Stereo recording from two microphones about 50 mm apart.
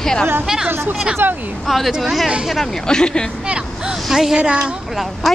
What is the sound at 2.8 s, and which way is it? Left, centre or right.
Speech, centre.